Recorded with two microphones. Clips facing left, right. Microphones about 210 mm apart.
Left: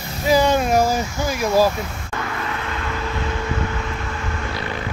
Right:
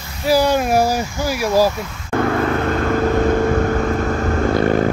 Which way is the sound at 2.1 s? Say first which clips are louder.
Right 11 dB; 50° right (ahead or behind).